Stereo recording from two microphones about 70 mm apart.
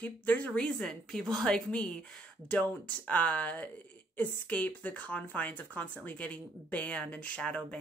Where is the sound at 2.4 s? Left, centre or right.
Left.